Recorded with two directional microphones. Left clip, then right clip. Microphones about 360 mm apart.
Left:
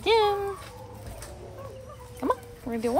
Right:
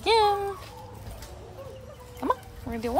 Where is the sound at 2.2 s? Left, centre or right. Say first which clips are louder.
Even; centre.